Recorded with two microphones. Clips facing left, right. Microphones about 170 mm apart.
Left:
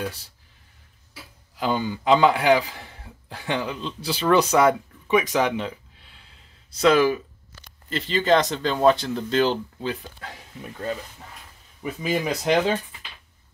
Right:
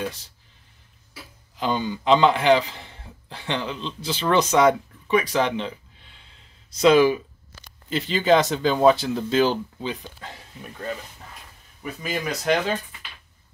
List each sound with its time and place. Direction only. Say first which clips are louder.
0.0 s speech: right 1 dB; 10° left (ahead or behind)
1.6 s a man's voice: even; 10° left (ahead or behind)
11.8 s speech: left 4 dB; 20° left (ahead or behind)